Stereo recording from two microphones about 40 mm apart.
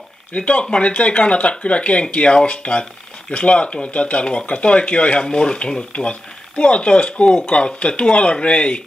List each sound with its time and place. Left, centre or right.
0.3 s speech: left